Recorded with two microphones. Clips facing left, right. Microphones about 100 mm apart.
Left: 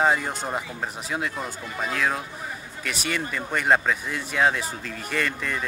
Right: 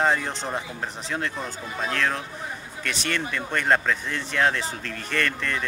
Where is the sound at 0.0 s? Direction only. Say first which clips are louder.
Left 1 dB; 10° left (ahead or behind).